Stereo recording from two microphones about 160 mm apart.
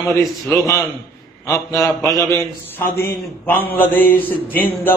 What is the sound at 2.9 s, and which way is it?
A man's voice, 10° left (ahead or behind).